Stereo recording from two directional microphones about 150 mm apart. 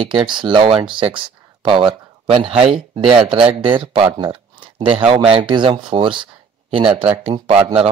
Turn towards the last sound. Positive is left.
turn(degrees=-40)  # may be behind; listen again after turning